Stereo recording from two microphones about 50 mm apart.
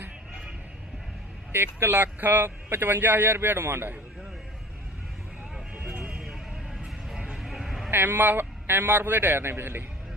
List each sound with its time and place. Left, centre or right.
1.5 s speech: right
7.3 s a sound: centre
7.9 s speech: right